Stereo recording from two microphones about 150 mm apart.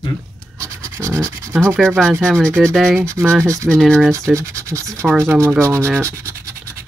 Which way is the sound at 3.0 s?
20° right (ahead or behind).